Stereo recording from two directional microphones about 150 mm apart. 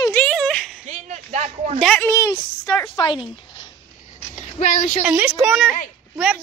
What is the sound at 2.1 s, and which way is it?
Speech, 20° left (ahead or behind).